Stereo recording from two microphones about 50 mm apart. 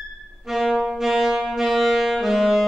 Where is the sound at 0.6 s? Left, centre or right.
Centre.